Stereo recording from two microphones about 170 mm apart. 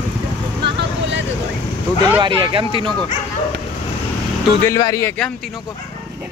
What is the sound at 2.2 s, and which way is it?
Speech, 30° right (ahead or behind).